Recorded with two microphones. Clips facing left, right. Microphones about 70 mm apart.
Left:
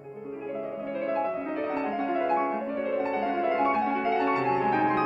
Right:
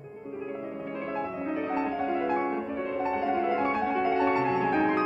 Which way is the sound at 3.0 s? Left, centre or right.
Centre.